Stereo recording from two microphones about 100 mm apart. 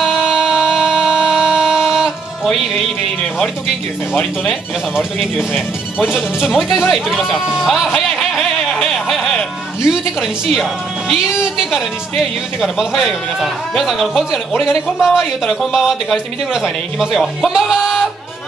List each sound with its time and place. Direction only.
0.0 s a sound: 5° right (ahead or behind)
4.1 s speech: 15° left (ahead or behind)
4.9 s a man's voice: 5° right (ahead or behind)